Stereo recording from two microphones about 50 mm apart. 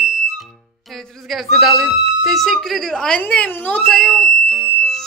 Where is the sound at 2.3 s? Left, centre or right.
Centre.